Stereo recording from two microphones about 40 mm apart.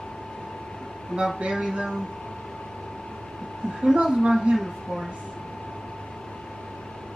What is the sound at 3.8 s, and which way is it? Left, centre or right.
Speech, centre.